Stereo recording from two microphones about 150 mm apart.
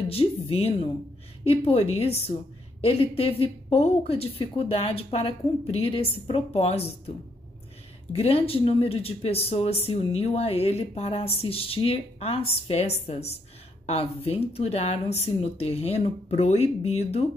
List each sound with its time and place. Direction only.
0.1 s a woman's voice: 40° left (ahead or behind)
8.1 s a woman's voice: 40° left (ahead or behind)